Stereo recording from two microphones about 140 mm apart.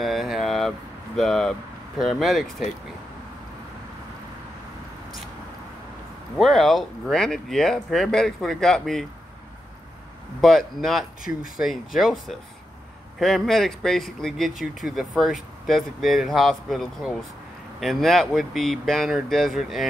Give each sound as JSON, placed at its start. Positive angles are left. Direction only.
{"t": 0.0, "sound": "speech", "side_deg": 0}
{"t": 6.3, "sound": "speech", "side_deg": 0}
{"t": 10.4, "sound": "speech", "side_deg": 0}
{"t": 11.2, "sound": "speech", "side_deg": 80}
{"t": 12.0, "sound": "speech", "side_deg": 0}